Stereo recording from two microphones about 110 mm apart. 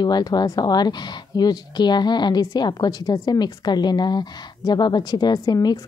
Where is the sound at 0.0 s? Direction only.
40° left (ahead or behind).